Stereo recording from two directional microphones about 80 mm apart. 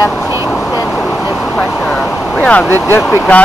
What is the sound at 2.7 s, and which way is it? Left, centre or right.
Speech, left.